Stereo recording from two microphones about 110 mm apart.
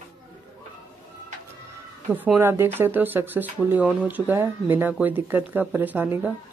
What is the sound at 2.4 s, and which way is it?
Speech, 20° right (ahead or behind).